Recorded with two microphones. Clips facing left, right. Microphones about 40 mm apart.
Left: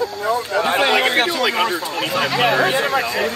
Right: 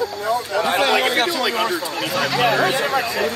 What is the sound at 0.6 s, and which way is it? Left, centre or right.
A man's voice, left.